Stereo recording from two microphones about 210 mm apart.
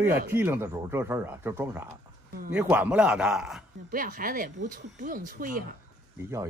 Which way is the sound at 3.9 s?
40° right (ahead or behind).